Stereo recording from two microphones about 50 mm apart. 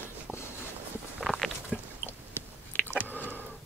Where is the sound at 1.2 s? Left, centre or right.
Centre.